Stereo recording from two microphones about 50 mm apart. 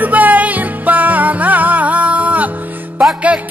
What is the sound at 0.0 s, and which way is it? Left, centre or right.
Music, right.